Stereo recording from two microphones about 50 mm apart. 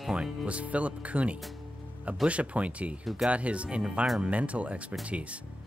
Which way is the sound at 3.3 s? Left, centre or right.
Right.